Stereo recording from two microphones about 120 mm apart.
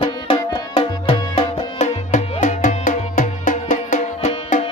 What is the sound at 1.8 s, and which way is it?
Music, 90° left.